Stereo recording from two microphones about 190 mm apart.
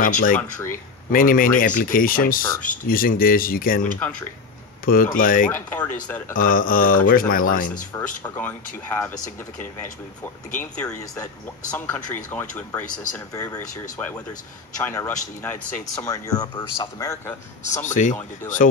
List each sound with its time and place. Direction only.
0.0 s speech: 45° left (ahead or behind)
0.4 s speech: 10° left (ahead or behind)
1.1 s speech: 45° left (ahead or behind)
5.5 s speech: 10° left (ahead or behind)
6.3 s speech: 45° left (ahead or behind)
7.9 s speech: 10° left (ahead or behind)
17.8 s speech: 40° left (ahead or behind)